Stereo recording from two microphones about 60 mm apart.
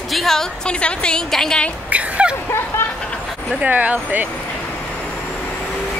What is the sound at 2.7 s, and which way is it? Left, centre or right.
Vehicle, left.